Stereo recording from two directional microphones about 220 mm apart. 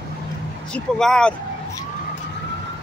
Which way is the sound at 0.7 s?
5° left (ahead or behind).